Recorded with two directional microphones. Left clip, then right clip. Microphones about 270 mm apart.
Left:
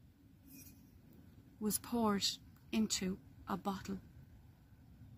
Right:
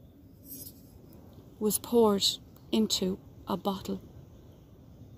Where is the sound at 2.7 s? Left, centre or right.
Left.